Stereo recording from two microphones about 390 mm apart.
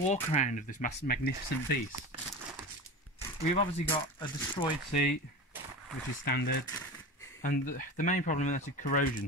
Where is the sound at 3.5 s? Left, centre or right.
Centre.